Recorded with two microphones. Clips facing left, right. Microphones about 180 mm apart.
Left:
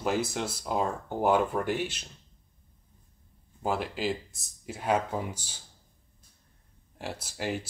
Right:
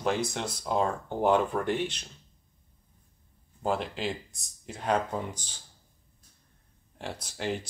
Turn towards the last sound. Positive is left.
turn(degrees=5)  # may be behind; listen again after turning